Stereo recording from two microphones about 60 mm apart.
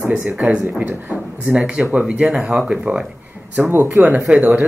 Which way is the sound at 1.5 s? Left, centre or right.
Centre.